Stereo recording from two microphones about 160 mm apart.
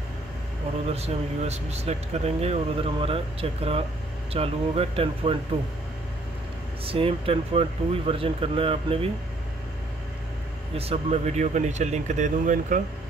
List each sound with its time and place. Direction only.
0.8 s speech: 40° right (ahead or behind)
6.8 s speech: 35° right (ahead or behind)
10.8 s speech: 40° right (ahead or behind)